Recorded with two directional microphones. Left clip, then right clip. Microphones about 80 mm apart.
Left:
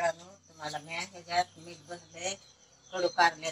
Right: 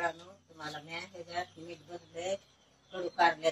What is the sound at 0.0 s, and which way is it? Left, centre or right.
Speech, right.